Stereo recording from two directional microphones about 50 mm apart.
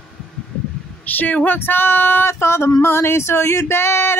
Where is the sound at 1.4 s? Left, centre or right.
Left.